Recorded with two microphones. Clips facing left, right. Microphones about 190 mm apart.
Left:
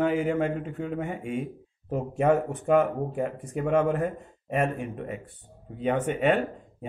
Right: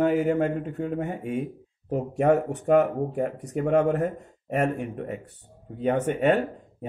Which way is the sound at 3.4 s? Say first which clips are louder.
Right 3 dB; 75° right (ahead or behind).